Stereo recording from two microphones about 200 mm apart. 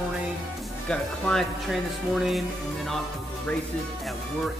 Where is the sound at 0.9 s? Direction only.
5° left (ahead or behind).